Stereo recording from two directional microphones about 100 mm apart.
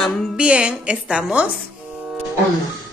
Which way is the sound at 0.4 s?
10° right (ahead or behind).